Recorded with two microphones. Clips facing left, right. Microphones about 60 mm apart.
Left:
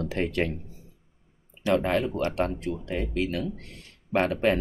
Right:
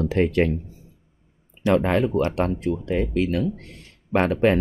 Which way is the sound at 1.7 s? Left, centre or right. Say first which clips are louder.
Right 4 dB; right.